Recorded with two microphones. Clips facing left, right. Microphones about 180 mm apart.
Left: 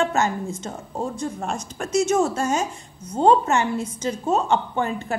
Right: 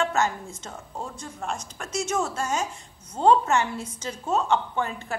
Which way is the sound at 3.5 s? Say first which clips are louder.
Left 4 dB; 15° left (ahead or behind).